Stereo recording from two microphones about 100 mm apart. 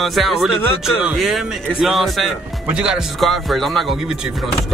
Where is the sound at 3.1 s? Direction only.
Centre (ahead or behind).